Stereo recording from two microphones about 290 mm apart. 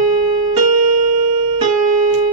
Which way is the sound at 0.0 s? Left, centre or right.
Right.